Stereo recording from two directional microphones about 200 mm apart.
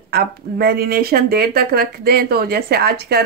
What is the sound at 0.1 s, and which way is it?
Speech, 50° right (ahead or behind).